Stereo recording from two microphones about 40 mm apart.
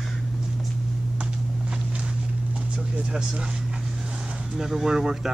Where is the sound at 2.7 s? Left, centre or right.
Right.